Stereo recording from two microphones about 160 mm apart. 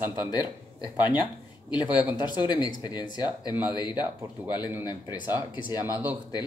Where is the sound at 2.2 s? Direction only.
25° left (ahead or behind).